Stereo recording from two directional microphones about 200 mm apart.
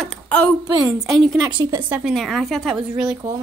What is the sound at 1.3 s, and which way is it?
Speech, 20° right (ahead or behind).